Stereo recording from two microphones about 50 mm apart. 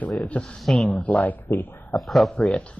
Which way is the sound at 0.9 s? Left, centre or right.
Left.